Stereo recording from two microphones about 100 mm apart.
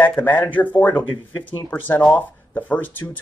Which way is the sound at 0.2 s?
15° left (ahead or behind).